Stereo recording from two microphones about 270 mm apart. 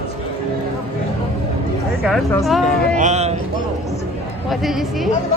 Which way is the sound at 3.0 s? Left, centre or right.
Right.